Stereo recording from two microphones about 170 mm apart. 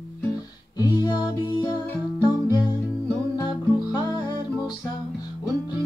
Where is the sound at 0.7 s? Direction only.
25° left (ahead or behind).